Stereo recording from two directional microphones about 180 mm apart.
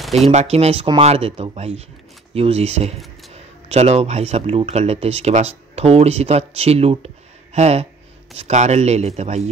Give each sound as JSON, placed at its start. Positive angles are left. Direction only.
{"t": 0.3, "sound": "speech", "side_deg": -35}